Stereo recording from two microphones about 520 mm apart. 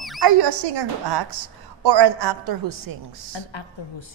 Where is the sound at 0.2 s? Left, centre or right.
Right.